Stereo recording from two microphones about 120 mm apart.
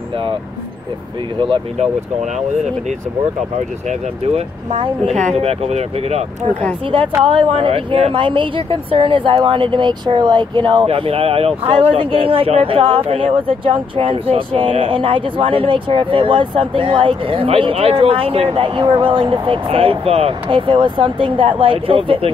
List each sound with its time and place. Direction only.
4.4 s speech: 60° right (ahead or behind)
7.2 s a woman's voice: 45° right (ahead or behind)